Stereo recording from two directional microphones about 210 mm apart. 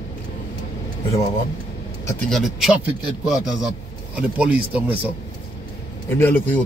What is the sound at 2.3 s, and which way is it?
Speech, centre (ahead or behind).